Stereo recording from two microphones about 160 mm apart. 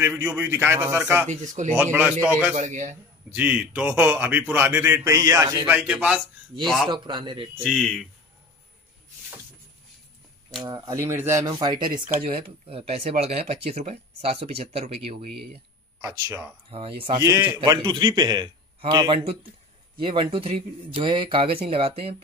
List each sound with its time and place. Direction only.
0.0 s a man's voice: 15° right (ahead or behind)
1.3 s a man's voice: 50° right (ahead or behind)
1.8 s a man's voice: 10° right (ahead or behind)
2.5 s a man's voice: 45° right (ahead or behind)
3.3 s a man's voice: 10° right (ahead or behind)
5.7 s a man's voice: 5° right (ahead or behind)
6.9 s a man's voice: 30° right (ahead or behind)
7.6 s speech: centre (ahead or behind)
10.6 s a man's voice: 25° right (ahead or behind)
11.4 s a man's voice: 30° right (ahead or behind)
16.0 s a man's voice: 15° right (ahead or behind)
16.7 s speech: 35° right (ahead or behind)
17.2 s a man's voice: 20° right (ahead or behind); by 22.0 s 35° right (ahead or behind)